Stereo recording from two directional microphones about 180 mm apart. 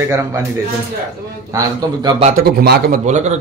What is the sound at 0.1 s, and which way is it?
Speech, 15° right (ahead or behind).